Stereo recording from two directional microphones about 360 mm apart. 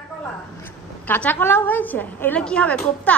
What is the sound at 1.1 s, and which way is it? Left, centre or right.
A woman's voice, centre.